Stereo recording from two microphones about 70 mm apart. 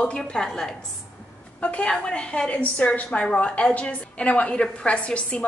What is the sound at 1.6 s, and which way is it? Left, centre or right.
A woman's voice, centre.